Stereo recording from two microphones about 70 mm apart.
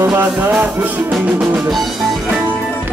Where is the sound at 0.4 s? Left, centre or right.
Right.